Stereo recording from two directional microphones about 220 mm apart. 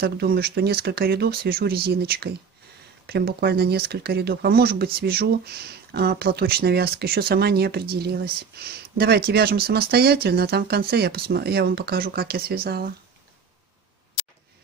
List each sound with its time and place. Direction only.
0.0 s speech: 45° right (ahead or behind)